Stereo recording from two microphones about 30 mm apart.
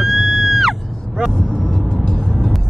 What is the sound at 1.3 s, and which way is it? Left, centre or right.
Vehicle, left.